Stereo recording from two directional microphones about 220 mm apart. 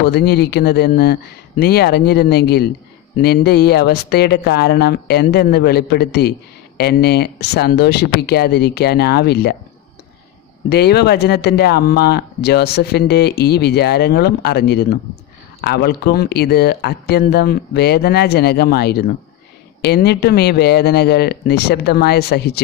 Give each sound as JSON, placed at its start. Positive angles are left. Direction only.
{"t": 0.0, "sound": "speech", "side_deg": 45}
{"t": 10.7, "sound": "speech", "side_deg": 45}